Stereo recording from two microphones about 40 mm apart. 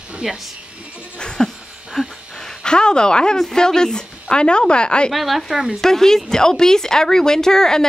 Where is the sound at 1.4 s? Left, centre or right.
Centre.